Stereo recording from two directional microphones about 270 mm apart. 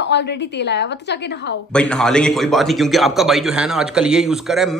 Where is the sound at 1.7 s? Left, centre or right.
Centre.